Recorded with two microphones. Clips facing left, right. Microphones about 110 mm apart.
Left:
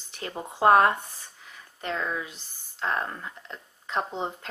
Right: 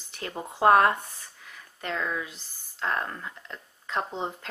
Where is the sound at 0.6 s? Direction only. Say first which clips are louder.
Left 1 dB; 15° left (ahead or behind).